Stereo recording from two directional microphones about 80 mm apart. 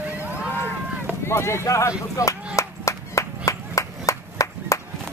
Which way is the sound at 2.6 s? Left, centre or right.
Left.